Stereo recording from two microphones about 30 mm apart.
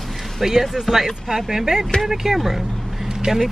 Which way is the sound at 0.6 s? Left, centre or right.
Centre.